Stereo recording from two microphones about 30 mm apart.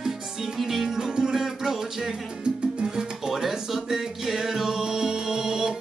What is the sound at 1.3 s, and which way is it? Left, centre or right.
Music, centre.